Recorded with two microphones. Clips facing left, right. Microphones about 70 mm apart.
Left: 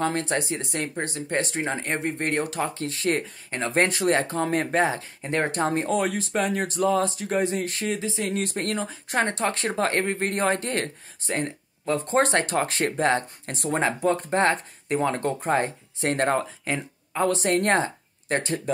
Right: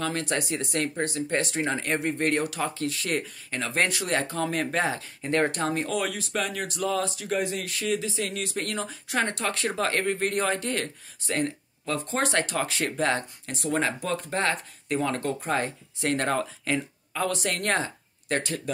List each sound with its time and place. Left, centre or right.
0.0 s speech: left